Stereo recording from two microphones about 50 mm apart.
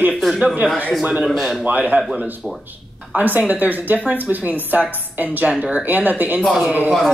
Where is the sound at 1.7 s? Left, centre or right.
Right.